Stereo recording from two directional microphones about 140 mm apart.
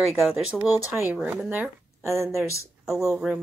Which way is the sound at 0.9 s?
15° right (ahead or behind).